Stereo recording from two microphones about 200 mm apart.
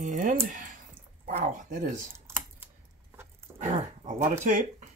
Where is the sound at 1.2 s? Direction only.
40° right (ahead or behind).